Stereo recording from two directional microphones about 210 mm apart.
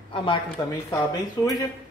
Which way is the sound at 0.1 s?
25° left (ahead or behind).